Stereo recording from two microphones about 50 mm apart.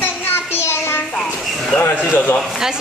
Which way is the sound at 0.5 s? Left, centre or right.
Left.